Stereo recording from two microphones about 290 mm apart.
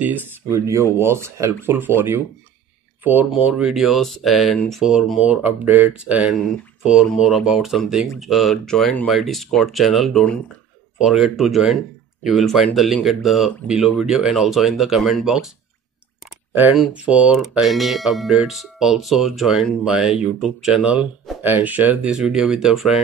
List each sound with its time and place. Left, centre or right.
0.0 s speech: centre
16.5 s speech: centre